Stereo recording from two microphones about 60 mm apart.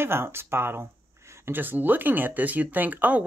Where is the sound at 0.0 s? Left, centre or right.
Right.